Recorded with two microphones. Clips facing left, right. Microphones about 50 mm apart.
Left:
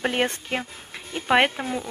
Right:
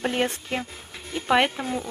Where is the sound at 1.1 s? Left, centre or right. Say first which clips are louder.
Left 1 dB; left.